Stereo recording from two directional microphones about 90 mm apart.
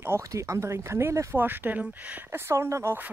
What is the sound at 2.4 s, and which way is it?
Speech, 30° right (ahead or behind).